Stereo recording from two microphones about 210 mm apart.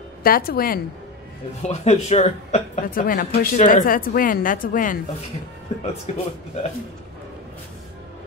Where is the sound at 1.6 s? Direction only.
30° left (ahead or behind).